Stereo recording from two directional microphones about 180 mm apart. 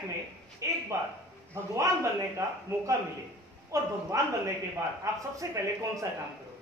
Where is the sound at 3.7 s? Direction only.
20° right (ahead or behind).